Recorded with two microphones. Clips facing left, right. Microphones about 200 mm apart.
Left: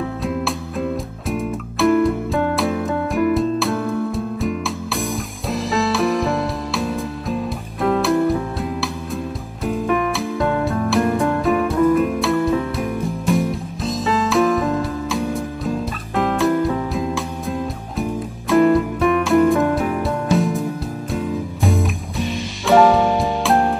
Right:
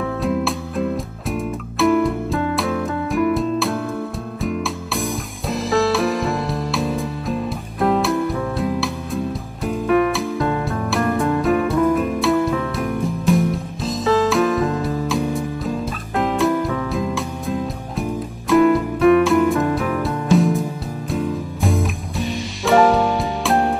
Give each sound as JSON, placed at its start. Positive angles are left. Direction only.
{"t": 0.2, "sound": "music", "side_deg": 0}